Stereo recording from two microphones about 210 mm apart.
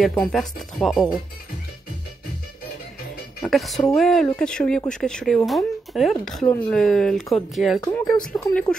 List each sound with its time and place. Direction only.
0.1 s speech: 5° left (ahead or behind)
3.4 s speech: centre (ahead or behind)
7.8 s speech: 15° left (ahead or behind)
8.2 s speech: 5° left (ahead or behind)